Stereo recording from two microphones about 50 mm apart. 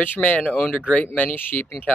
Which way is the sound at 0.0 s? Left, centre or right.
Left.